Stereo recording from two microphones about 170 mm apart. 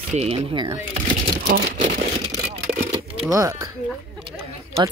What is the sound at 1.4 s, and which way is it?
Speech, 75° right (ahead or behind).